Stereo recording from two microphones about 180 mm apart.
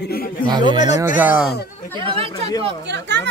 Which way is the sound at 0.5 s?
25° right (ahead or behind).